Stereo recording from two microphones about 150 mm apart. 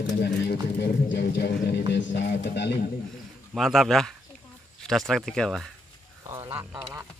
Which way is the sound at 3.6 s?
Centre (ahead or behind).